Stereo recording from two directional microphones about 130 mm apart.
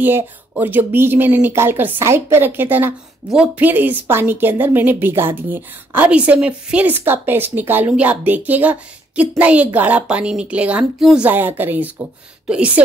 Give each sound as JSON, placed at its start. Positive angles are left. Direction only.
{"t": 0.0, "sound": "a woman's voice", "side_deg": -15}